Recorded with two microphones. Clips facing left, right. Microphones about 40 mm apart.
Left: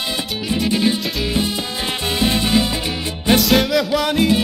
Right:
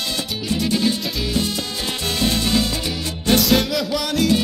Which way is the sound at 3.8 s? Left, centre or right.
Left.